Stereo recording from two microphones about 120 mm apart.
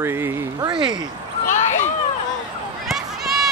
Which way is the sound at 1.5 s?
85° left.